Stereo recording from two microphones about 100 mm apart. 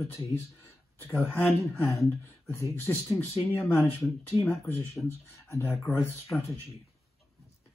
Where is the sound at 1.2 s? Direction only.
20° left (ahead or behind).